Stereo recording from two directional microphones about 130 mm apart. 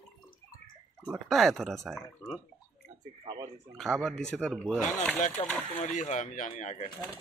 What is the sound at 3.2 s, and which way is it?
Speech, 30° right (ahead or behind).